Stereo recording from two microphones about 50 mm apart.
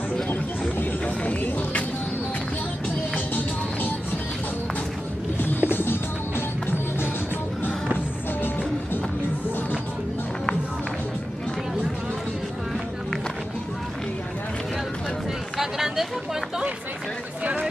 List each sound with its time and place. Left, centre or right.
1.0 s music: left
5.7 s music: left
15.5 s a sound: centre